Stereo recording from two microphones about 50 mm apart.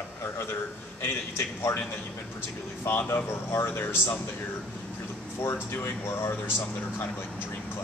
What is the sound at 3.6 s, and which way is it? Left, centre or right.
Speech, left.